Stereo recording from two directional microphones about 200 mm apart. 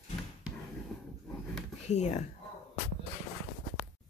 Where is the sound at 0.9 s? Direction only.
Centre (ahead or behind).